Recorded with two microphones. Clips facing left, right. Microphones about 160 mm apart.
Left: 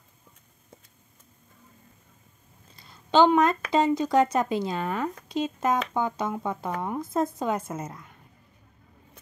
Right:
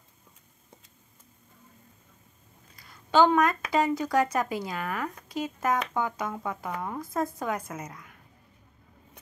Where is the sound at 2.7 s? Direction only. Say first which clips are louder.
Left 2 dB; 25° left (ahead or behind).